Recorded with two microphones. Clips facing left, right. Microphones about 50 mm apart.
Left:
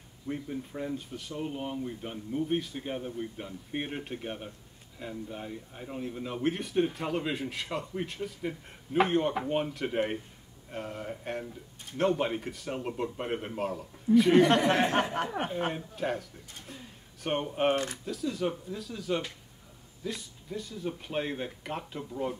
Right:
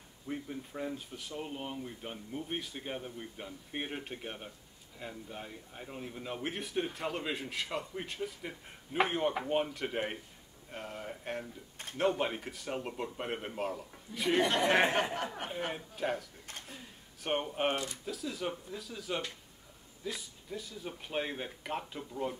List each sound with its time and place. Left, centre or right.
0.3 s speech: centre
14.3 s speech: left
14.6 s speech: right
15.7 s speech: centre
16.6 s a sound: centre
18.0 s speech: centre